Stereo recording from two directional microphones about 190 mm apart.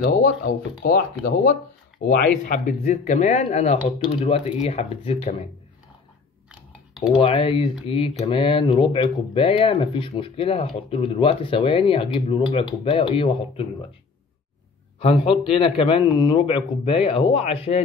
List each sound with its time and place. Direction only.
0.0 s speech: 50° left (ahead or behind)
2.4 s speech: 40° left (ahead or behind)
7.2 s speech: 30° left (ahead or behind)
15.0 s speech: 30° left (ahead or behind)